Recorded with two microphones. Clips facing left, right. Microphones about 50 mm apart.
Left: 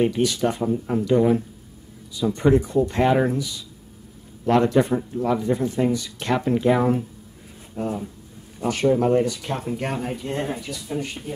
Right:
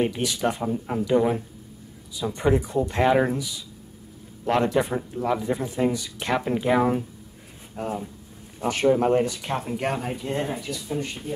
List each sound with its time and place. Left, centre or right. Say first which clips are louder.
0.0 s speech: left 3 dB; centre
8.5 s speech: left 1 dB; right; by 11.3 s centre